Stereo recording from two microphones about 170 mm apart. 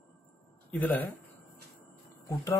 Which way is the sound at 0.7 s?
10° left (ahead or behind).